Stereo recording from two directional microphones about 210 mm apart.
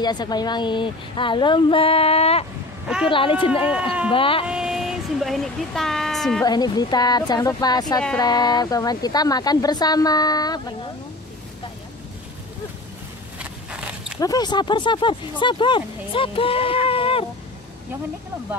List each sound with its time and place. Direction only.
0.0 s speech: 20° left (ahead or behind)
4.5 s speech: centre (ahead or behind)
6.4 s speech: 20° left (ahead or behind)
13.4 s a sound: 5° right (ahead or behind)
14.2 s speech: 20° left (ahead or behind)